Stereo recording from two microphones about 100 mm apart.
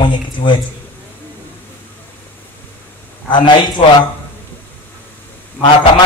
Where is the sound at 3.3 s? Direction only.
55° left (ahead or behind).